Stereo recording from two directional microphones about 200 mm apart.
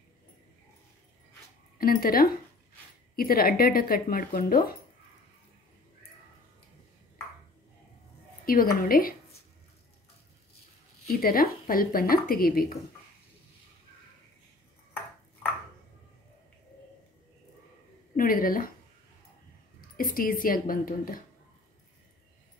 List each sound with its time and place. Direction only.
1.8 s speech: 45° left (ahead or behind)
8.5 s speech: 45° left (ahead or behind)
11.1 s speech: 45° left (ahead or behind)
18.1 s speech: 45° left (ahead or behind)
20.0 s speech: 45° left (ahead or behind)